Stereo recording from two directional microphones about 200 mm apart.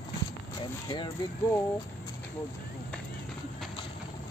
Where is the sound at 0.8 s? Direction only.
20° left (ahead or behind).